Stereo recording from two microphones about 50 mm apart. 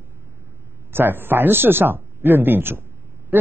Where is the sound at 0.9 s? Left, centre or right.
Right.